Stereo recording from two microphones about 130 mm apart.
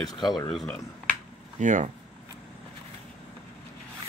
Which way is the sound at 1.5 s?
70° right (ahead or behind).